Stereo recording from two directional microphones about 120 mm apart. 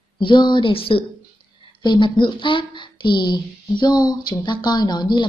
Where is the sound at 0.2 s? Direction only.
40° left (ahead or behind).